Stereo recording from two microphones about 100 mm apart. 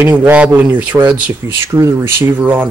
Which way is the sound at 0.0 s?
15° right (ahead or behind).